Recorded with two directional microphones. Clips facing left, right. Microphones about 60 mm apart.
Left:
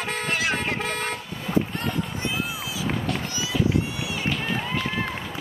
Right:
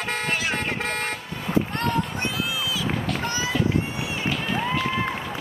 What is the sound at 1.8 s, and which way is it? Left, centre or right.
Run, right.